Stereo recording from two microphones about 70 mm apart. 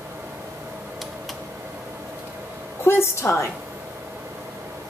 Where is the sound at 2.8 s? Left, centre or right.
Left.